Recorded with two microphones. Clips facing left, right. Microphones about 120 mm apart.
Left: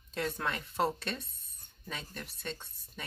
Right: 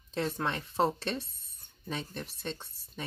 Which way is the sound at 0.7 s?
30° right (ahead or behind).